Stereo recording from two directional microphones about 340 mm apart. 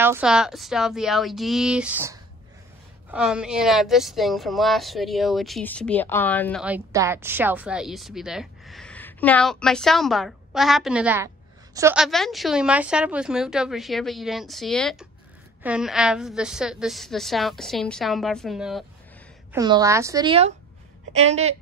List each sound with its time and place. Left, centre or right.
0.0 s a woman's voice: centre
19.5 s a woman's voice: centre